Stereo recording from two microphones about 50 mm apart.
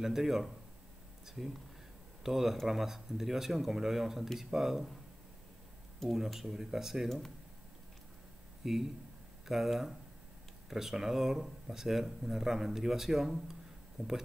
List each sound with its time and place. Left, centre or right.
0.0 s speech: centre
6.0 s speech: centre
7.1 s speech: centre
8.6 s speech: centre